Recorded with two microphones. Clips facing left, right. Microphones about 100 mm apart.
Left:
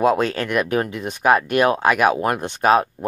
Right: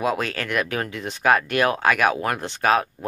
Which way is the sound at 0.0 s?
30° left (ahead or behind).